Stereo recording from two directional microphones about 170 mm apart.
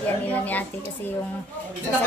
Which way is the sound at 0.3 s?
10° left (ahead or behind).